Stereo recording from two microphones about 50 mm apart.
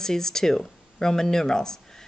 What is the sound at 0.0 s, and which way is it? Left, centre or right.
Speech, centre.